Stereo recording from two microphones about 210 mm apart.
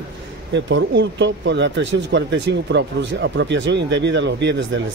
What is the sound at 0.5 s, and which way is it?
Speech, 60° right (ahead or behind).